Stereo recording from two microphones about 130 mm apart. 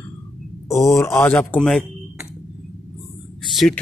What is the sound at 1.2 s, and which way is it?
A man's voice, 10° left (ahead or behind).